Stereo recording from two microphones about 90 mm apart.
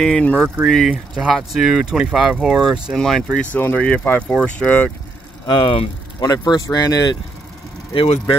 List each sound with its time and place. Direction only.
0.0 s speech: 15° left (ahead or behind)
0.7 s speech: centre (ahead or behind)
3.0 s speech: 5° left (ahead or behind)
3.5 s speech: 20° left (ahead or behind)
5.5 s speech: 80° left
6.1 s speech: 45° left (ahead or behind)
7.9 s speech: 75° left (ahead or behind)